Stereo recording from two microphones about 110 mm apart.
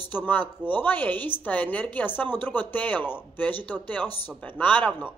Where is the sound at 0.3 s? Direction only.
15° left (ahead or behind).